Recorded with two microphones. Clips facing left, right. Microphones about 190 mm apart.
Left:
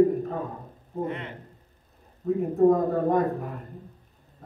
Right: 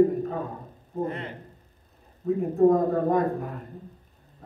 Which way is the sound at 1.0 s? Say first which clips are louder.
Right 1 dB; 35° right (ahead or behind).